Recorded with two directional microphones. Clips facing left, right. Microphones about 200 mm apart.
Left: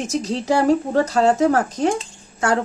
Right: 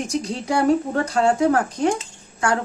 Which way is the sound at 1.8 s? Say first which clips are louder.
Left 1 dB; 30° left (ahead or behind).